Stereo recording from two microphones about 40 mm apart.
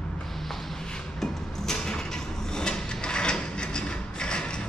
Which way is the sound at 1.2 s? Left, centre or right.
Centre.